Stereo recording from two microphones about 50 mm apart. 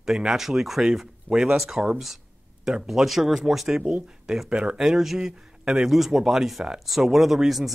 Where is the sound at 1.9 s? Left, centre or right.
Centre.